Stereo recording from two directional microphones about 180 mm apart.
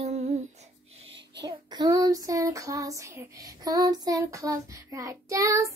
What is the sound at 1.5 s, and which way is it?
Child singing, 25° right (ahead or behind).